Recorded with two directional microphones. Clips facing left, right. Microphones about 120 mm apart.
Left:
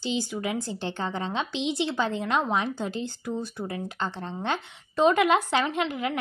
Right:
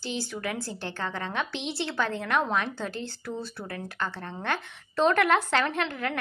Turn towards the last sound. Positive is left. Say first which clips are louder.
# left 2 dB
turn(degrees=15)  # may be behind; listen again after turning